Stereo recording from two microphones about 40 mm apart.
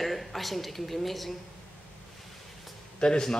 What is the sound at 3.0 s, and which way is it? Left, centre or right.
Speech, centre.